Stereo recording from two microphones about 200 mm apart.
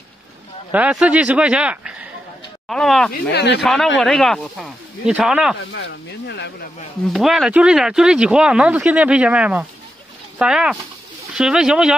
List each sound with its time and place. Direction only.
0.7 s speech: 5° right (ahead or behind)
3.1 s speech: 55° left (ahead or behind)
3.6 s speech: centre (ahead or behind)
5.7 s speech: 60° left (ahead or behind)
7.1 s speech: centre (ahead or behind)